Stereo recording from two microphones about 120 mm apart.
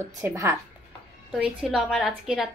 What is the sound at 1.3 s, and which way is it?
Speech, 5° right (ahead or behind).